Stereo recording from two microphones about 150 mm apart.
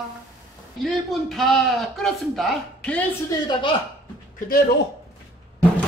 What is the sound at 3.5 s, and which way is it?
Speech, 35° left (ahead or behind).